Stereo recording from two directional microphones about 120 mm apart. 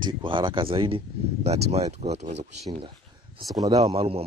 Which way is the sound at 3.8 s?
55° right (ahead or behind).